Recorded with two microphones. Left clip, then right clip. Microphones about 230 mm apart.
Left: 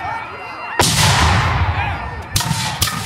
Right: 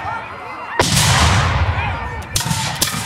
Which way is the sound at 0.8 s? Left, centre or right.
Left.